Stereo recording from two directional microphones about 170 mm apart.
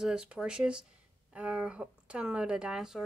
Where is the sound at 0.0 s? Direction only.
5° right (ahead or behind).